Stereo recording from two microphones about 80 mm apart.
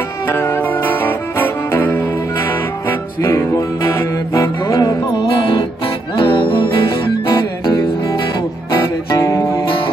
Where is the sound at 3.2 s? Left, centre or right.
Left.